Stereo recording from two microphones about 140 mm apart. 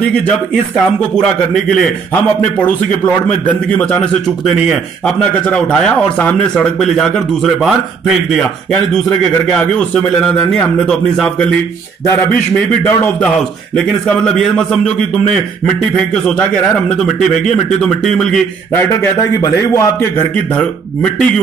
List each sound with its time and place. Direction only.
1.5 s speech: 5° left (ahead or behind)
3.7 s a man's voice: 10° left (ahead or behind)
8.9 s speech: 5° left (ahead or behind)
12.8 s a man's voice: 15° left (ahead or behind)
18.7 s a man's voice: 20° left (ahead or behind)